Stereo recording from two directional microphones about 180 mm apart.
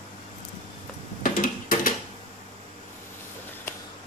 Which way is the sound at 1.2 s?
50° left (ahead or behind).